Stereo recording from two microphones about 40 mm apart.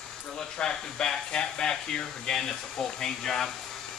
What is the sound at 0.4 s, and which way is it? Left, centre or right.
Speech, centre.